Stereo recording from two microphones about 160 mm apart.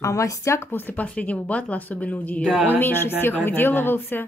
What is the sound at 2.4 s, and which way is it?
Speech, 5° right (ahead or behind).